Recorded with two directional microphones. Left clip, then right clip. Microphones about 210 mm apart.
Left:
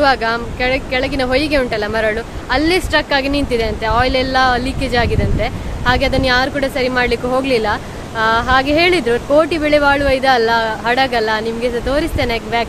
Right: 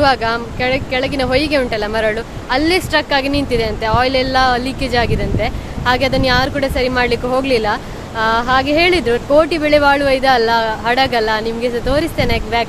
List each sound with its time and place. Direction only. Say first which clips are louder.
0.0 s speech: even; 10° right (ahead or behind)